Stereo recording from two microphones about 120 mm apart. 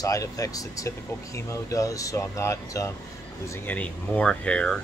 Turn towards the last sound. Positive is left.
turn(degrees=10)  # may be behind; listen again after turning